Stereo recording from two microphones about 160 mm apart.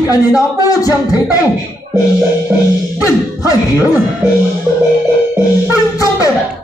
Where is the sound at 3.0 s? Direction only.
20° left (ahead or behind).